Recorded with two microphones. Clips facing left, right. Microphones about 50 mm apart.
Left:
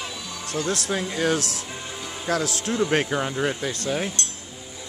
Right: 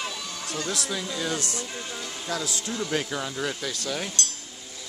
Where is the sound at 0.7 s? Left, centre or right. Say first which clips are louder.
Left 5 dB; left.